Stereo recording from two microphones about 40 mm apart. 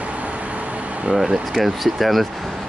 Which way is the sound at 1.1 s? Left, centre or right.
Centre.